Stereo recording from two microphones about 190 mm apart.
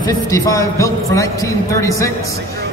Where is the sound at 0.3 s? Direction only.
15° left (ahead or behind).